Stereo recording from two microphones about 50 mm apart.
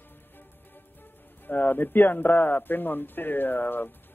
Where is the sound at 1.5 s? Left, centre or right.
Left.